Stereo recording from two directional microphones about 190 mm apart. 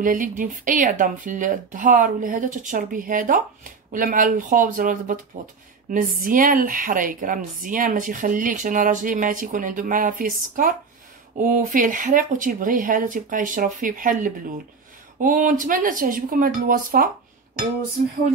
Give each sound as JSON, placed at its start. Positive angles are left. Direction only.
{"t": 0.0, "sound": "a woman's voice", "side_deg": -45}